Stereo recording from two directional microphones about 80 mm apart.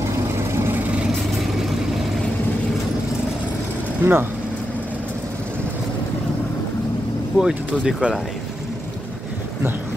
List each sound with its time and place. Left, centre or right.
0.5 s vehicle: right
4.0 s speech: right
7.3 s speech: centre